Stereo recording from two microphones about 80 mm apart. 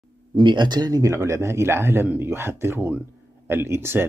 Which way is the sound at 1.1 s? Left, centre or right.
Right.